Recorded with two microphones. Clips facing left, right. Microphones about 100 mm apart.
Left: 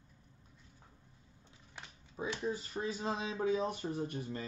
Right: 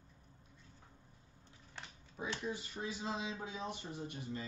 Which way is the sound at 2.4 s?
40° left (ahead or behind).